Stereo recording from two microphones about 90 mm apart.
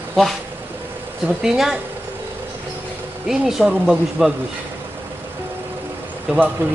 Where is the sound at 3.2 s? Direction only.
5° right (ahead or behind).